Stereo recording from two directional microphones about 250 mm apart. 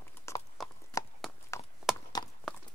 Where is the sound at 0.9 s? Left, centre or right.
Centre.